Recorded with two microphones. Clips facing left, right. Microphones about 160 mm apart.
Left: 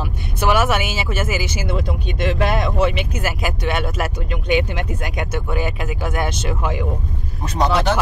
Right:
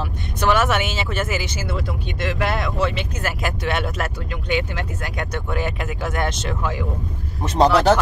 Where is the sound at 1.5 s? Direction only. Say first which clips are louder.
Left 3 dB; 20° left (ahead or behind).